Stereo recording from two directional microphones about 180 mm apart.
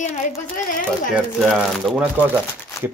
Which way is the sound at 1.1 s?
Centre (ahead or behind).